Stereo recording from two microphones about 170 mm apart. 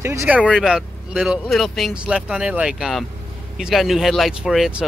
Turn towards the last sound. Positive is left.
turn(degrees=-5)  # may be behind; listen again after turning